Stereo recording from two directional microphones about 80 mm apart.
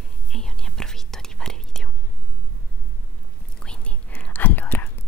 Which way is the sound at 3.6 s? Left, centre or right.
Centre.